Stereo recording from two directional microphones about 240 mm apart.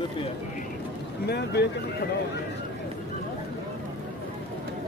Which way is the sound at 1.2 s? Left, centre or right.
Left.